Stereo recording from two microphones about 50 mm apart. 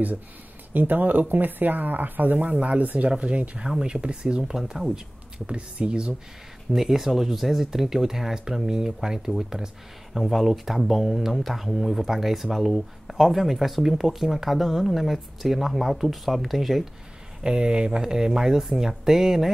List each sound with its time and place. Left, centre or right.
0.7 s speech: right
6.7 s speech: centre
17.4 s speech: centre